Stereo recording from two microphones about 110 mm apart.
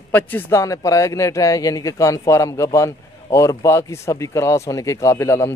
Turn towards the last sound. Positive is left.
turn(degrees=25)  # may be behind; listen again after turning